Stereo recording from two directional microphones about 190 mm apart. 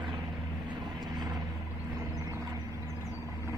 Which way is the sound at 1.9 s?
20° right (ahead or behind).